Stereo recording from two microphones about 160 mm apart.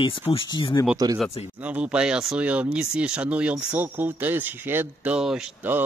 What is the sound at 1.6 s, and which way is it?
Speech, 10° right (ahead or behind).